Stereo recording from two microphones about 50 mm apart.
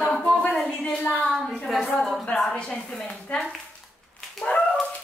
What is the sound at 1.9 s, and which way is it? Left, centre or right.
Speech, centre.